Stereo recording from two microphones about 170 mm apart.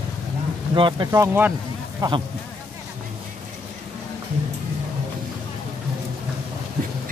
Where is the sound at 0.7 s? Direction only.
30° right (ahead or behind).